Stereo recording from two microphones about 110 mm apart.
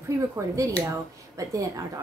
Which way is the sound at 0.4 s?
30° right (ahead or behind).